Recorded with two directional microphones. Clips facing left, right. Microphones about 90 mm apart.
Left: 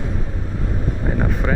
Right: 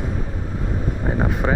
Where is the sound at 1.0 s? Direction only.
20° right (ahead or behind).